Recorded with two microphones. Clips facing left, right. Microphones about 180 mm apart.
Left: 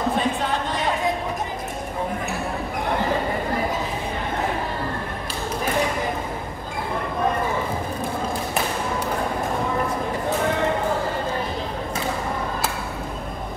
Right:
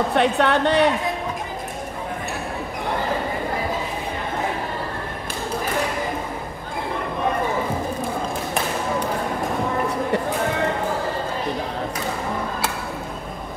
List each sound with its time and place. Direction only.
0.1 s speech: 70° right (ahead or behind)